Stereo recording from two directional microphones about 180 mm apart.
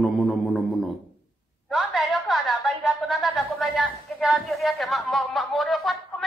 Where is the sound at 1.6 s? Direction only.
Centre (ahead or behind).